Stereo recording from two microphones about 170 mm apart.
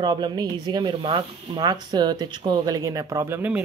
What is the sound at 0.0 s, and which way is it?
Speech, 25° right (ahead or behind).